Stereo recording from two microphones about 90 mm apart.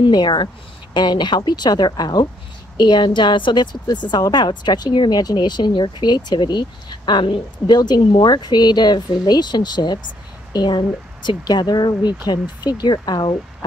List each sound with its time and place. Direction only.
0.0 s a woman's voice: 60° left (ahead or behind)